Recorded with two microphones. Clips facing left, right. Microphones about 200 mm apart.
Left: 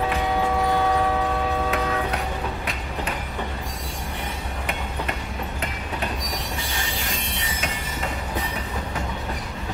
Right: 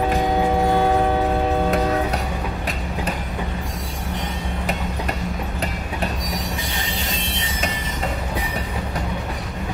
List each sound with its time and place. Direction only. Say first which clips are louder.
0.7 s music: right 4 dB; 35° right (ahead or behind)
1.7 s train: right 5 dB; 35° right (ahead or behind)